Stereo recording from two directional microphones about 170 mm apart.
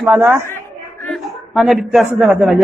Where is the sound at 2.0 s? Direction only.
5° right (ahead or behind).